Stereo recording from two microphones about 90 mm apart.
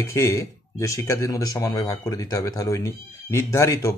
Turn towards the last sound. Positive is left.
turn(degrees=35)  # may be behind; listen again after turning